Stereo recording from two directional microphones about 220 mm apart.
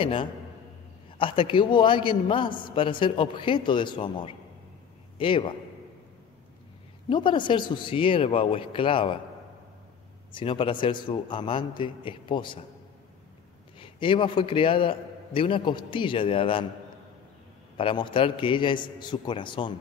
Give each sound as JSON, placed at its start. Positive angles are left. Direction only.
{"t": 0.0, "sound": "a man's voice", "side_deg": 25}
{"t": 7.1, "sound": "a man's voice", "side_deg": 20}
{"t": 10.3, "sound": "a man's voice", "side_deg": 25}
{"t": 13.7, "sound": "a man's voice", "side_deg": 25}
{"t": 17.7, "sound": "a man's voice", "side_deg": 25}